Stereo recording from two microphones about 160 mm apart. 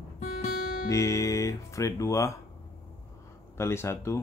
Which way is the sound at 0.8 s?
20° left (ahead or behind).